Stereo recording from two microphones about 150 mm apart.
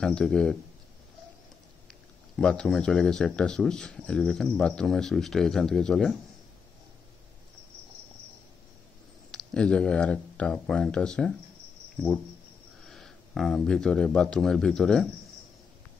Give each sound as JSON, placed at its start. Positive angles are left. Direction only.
{"t": 0.0, "sound": "speech", "side_deg": 5}
{"t": 1.9, "sound": "speech", "side_deg": 5}
{"t": 9.3, "sound": "speech", "side_deg": 5}
{"t": 12.8, "sound": "speech", "side_deg": 5}